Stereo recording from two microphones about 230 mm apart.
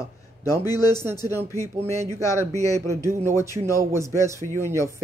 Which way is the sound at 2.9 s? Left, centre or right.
Centre.